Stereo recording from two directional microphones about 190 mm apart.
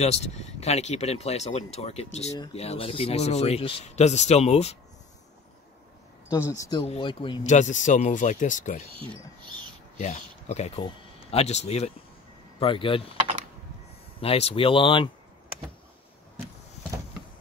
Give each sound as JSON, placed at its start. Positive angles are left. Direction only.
{"t": 0.0, "sound": "speech", "side_deg": 35}
{"t": 6.5, "sound": "speech", "side_deg": 20}
{"t": 7.4, "sound": "speech", "side_deg": 40}
{"t": 9.9, "sound": "speech", "side_deg": 35}
{"t": 14.2, "sound": "speech", "side_deg": 30}